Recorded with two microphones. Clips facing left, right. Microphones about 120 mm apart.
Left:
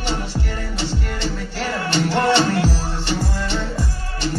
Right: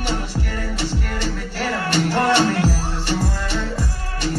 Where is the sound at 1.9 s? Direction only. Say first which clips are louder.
Left 1 dB; 45° right (ahead or behind).